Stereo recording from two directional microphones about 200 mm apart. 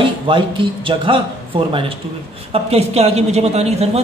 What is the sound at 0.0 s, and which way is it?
A man's voice, 25° right (ahead or behind).